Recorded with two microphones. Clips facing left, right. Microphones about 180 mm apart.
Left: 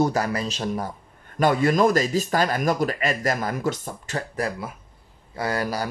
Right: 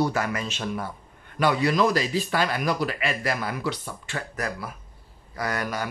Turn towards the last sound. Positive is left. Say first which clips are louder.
# left 3 dB
turn(degrees=30)  # may be behind; listen again after turning